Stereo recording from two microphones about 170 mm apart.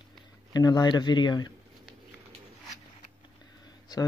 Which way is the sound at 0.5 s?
25° left (ahead or behind).